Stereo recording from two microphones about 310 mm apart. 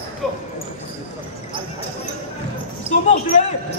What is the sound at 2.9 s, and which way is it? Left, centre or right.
Speech, left.